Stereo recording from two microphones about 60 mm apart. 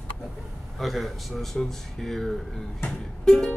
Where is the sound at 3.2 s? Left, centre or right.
Centre.